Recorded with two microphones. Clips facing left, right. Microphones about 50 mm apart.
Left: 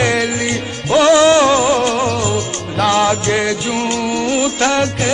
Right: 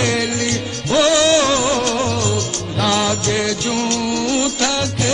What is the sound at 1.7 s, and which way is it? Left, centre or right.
Music, centre.